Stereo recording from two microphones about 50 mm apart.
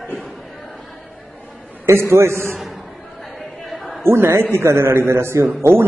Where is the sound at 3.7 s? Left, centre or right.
Centre.